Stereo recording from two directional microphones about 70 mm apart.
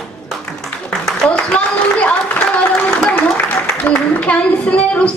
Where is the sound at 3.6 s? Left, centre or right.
Centre.